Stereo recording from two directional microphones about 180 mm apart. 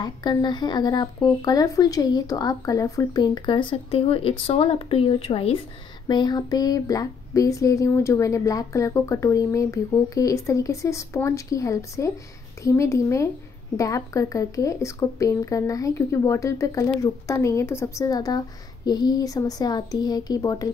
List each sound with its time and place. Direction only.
0.0 s speech: 25° left (ahead or behind)